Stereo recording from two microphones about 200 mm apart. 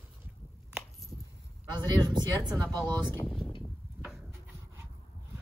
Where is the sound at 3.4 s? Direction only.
25° left (ahead or behind).